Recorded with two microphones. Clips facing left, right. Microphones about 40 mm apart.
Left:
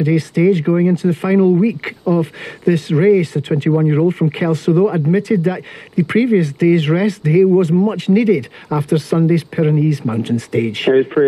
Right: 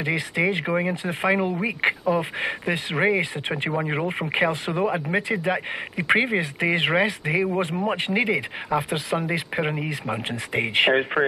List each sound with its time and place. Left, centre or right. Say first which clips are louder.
0.0 s speech: left 9 dB; right